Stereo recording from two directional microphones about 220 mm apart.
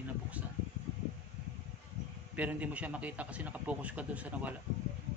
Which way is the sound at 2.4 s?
5° right (ahead or behind).